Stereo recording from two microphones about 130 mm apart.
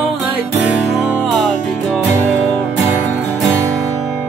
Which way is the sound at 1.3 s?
Centre (ahead or behind).